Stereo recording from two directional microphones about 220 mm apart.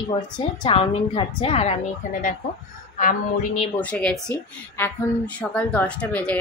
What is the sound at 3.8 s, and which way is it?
A woman's voice, 5° left (ahead or behind).